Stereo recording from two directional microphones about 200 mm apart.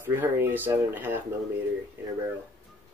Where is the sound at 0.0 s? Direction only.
10° right (ahead or behind).